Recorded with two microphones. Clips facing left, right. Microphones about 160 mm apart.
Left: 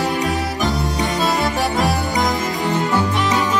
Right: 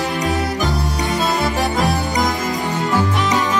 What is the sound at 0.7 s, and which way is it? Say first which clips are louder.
Music: left 1 dB; 20° left (ahead or behind).